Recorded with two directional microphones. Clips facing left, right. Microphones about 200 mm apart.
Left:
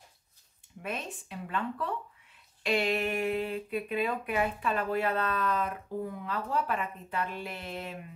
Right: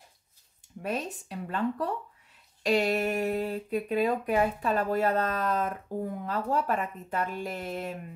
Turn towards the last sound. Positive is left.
turn(degrees=-45)  # may be behind; listen again after turning